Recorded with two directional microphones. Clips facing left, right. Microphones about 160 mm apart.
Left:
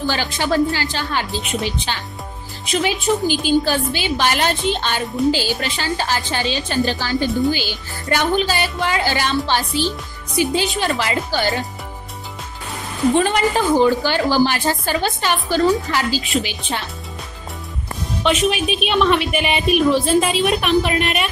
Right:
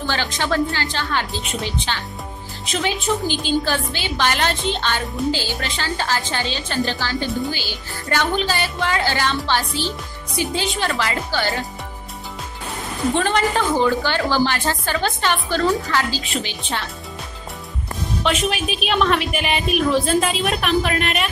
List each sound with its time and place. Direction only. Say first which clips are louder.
0.1 s a woman's voice: even; 15° left (ahead or behind)
2.8 s a woman's voice: left 3 dB; 10° left (ahead or behind)
13.1 s a woman's voice: left 2 dB; 10° left (ahead or behind)
18.2 s a woman's voice: left 4 dB; centre (ahead or behind)